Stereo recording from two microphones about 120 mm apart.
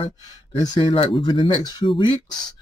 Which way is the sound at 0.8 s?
45° left (ahead or behind).